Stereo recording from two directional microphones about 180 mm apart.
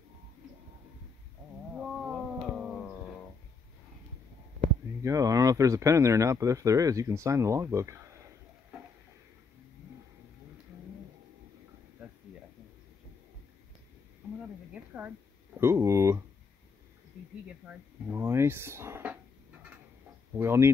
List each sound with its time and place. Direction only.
1.8 s cat: 5° right (ahead or behind)
5.0 s speech: 20° right (ahead or behind)
14.7 s a sound: 10° right (ahead or behind)
17.6 s speech: 10° right (ahead or behind)
20.3 s speech: 15° right (ahead or behind)